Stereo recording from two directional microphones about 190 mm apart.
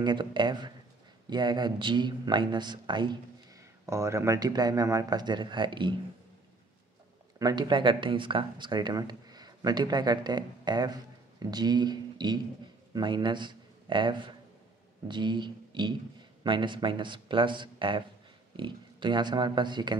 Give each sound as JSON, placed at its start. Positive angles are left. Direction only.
{"t": 0.0, "sound": "speech", "side_deg": -25}
{"t": 7.3, "sound": "a man's voice", "side_deg": -20}